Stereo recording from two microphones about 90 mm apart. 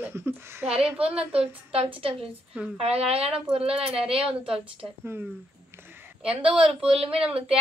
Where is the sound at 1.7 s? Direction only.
90° right.